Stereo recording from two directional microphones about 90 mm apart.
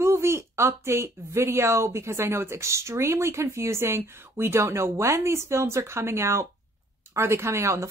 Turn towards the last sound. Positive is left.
turn(degrees=-30)  # may be behind; listen again after turning